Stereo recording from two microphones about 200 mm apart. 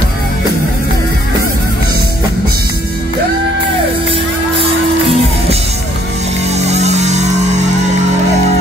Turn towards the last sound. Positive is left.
turn(degrees=-35)  # may be behind; listen again after turning